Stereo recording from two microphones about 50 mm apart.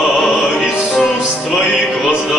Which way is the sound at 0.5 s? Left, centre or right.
Centre.